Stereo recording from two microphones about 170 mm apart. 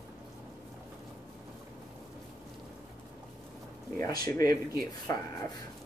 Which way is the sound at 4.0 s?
20° left (ahead or behind).